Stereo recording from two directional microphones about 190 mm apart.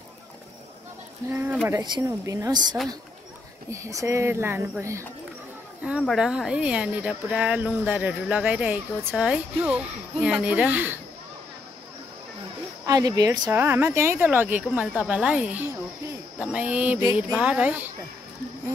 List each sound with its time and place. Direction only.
1.3 s a woman's voice: 10° right (ahead or behind)
12.8 s a woman's voice: 20° right (ahead or behind)